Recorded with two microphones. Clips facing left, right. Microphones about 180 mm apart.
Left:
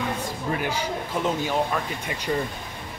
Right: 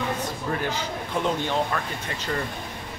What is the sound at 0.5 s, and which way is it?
Speech, 10° left (ahead or behind).